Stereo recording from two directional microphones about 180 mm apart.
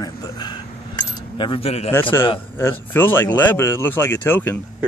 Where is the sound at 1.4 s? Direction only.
30° left (ahead or behind).